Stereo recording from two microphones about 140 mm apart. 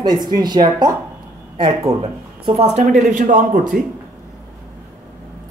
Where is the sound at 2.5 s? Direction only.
45° right (ahead or behind); by 3.8 s 75° right (ahead or behind).